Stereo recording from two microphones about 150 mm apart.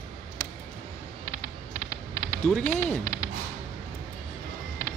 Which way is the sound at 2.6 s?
15° left (ahead or behind).